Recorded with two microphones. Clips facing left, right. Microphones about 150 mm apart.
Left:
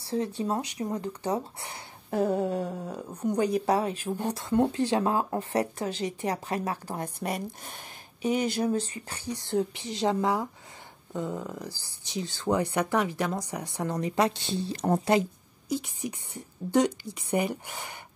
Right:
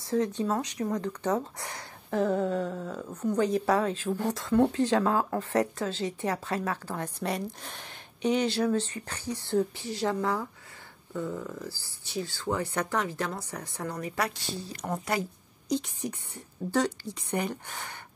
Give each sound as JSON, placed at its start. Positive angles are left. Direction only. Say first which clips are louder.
{"t": 0.7, "sound": "speech", "louder": "right 1 dB", "side_deg": 25}
{"t": 1.6, "sound": "a sound", "louder": "right 1 dB", "side_deg": 25}
{"t": 2.4, "sound": "a woman's voice", "louder": "even", "side_deg": 10}
{"t": 15.7, "sound": "a woman's voice", "louder": "right 1 dB", "side_deg": 10}